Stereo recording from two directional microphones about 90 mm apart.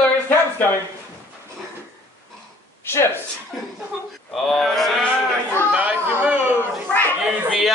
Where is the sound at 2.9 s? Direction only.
25° left (ahead or behind).